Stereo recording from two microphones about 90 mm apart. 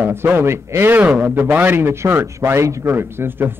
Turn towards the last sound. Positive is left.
turn(degrees=-25)  # may be behind; listen again after turning